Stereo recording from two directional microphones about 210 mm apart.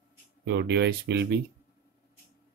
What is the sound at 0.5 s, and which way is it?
Speech, 55° right (ahead or behind).